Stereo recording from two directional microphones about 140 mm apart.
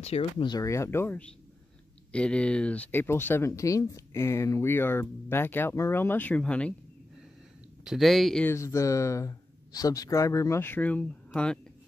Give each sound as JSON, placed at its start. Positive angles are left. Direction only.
{"t": 0.0, "sound": "speech", "side_deg": 45}
{"t": 0.6, "sound": "speech", "side_deg": 20}
{"t": 7.8, "sound": "speech", "side_deg": 0}
{"t": 8.5, "sound": "speech", "side_deg": 20}